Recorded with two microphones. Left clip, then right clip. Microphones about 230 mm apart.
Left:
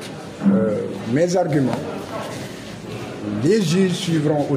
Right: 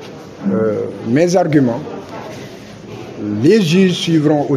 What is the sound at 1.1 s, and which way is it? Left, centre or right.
Speech, right.